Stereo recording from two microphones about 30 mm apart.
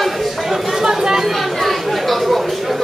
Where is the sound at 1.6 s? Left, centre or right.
Centre.